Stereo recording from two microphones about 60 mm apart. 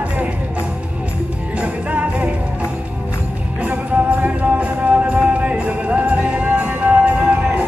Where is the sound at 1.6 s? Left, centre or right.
Right.